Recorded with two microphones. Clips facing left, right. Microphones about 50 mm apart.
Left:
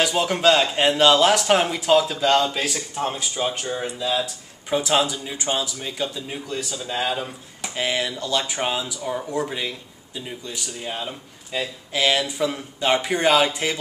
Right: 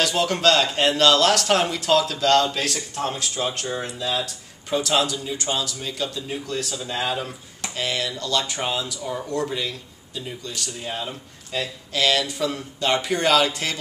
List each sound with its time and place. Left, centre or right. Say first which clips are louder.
0.0 s speech: left 1 dB; centre
7.7 s speech: left 2 dB; centre